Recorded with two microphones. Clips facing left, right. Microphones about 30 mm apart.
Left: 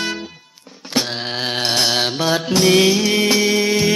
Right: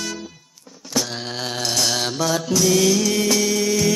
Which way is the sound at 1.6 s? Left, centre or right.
Left.